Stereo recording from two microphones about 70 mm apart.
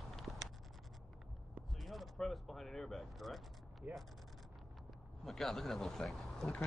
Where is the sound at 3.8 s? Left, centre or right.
Right.